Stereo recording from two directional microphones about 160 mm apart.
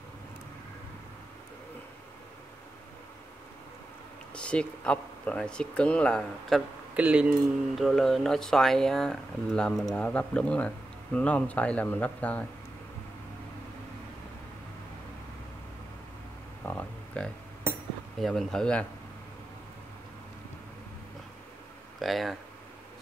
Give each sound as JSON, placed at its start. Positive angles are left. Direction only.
{"t": 4.4, "sound": "speech", "side_deg": 5}
{"t": 7.0, "sound": "speech", "side_deg": -10}
{"t": 16.6, "sound": "a sound", "side_deg": 10}
{"t": 18.2, "sound": "speech", "side_deg": 0}
{"t": 22.0, "sound": "speech", "side_deg": 0}